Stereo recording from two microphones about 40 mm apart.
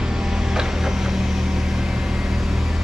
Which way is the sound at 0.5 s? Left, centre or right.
Centre.